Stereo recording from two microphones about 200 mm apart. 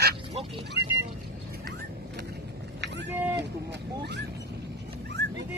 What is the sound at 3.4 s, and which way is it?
Boat, 60° right (ahead or behind).